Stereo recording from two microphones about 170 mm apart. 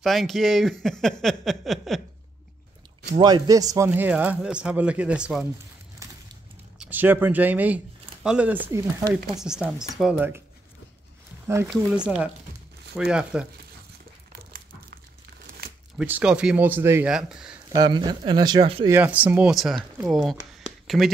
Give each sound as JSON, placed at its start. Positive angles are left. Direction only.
{"t": 0.0, "sound": "speech", "side_deg": 0}
{"t": 3.2, "sound": "speech", "side_deg": -25}
{"t": 6.0, "sound": "a sound", "side_deg": -20}
{"t": 6.8, "sound": "speech", "side_deg": -10}
{"t": 9.4, "sound": "speech", "side_deg": -5}
{"t": 11.4, "sound": "speech", "side_deg": -15}
{"t": 12.9, "sound": "speech", "side_deg": -5}
{"t": 14.3, "sound": "dog", "side_deg": -65}
{"t": 16.0, "sound": "speech", "side_deg": -5}
{"t": 17.6, "sound": "speech", "side_deg": -25}
{"t": 18.9, "sound": "speech", "side_deg": -10}
{"t": 20.8, "sound": "a sound", "side_deg": 0}